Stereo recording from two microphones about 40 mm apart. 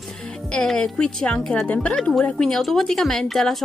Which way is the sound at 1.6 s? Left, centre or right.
Left.